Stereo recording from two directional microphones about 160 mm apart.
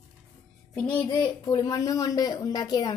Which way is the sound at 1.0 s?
25° left (ahead or behind).